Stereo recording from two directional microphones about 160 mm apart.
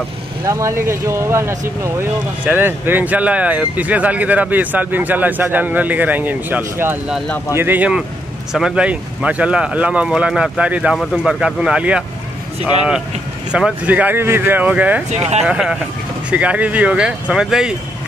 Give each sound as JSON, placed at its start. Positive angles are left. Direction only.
{"t": 0.5, "sound": "speech", "side_deg": -20}
{"t": 13.5, "sound": "speech", "side_deg": -5}
{"t": 15.0, "sound": "speech", "side_deg": -45}
{"t": 15.4, "sound": "speech", "side_deg": -5}